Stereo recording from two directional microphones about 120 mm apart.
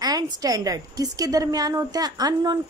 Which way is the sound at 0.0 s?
35° right (ahead or behind).